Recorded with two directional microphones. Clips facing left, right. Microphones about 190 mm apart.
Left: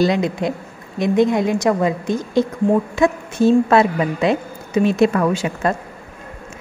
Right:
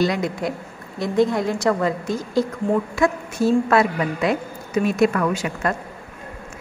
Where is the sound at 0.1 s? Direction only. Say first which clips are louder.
Left 4 dB; 20° left (ahead or behind).